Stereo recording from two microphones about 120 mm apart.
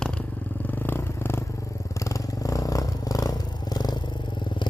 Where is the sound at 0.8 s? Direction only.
20° left (ahead or behind).